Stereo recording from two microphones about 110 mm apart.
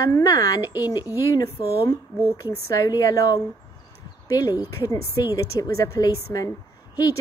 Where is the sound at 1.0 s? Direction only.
20° right (ahead or behind).